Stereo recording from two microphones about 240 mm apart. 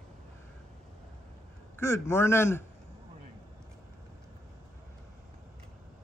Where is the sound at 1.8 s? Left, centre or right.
Centre.